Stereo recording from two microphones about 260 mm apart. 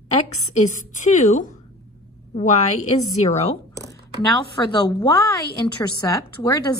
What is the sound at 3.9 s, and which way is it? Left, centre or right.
A woman's voice, centre.